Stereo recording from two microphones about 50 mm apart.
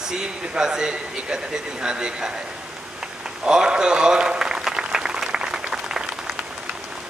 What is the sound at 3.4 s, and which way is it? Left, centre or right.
Applause, centre.